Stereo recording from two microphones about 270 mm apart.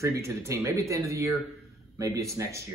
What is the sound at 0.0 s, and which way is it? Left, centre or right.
Speech, centre.